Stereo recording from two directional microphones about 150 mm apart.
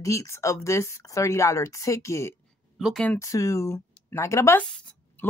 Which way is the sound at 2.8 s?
5° left (ahead or behind).